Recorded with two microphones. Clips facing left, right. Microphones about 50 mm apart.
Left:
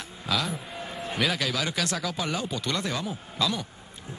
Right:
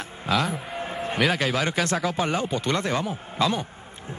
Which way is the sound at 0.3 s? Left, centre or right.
Right.